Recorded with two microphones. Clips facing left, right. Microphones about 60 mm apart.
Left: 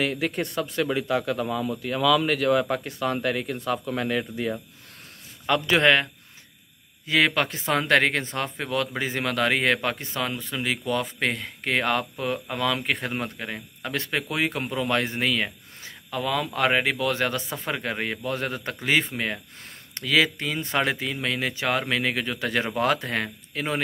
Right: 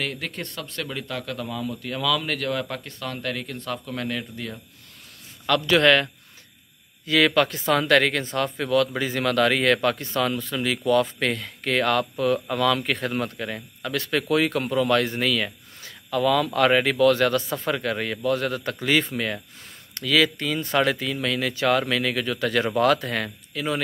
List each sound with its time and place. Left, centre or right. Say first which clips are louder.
0.0 s speech: left 5 dB; centre
7.1 s speech: right 3 dB; left
13.8 s speech: right 4 dB; left
23.5 s speech: right 1 dB; left